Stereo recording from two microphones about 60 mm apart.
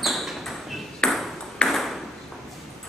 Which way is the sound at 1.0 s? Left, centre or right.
Centre.